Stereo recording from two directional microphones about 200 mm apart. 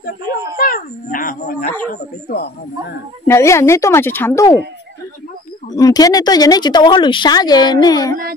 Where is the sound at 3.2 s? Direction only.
15° left (ahead or behind).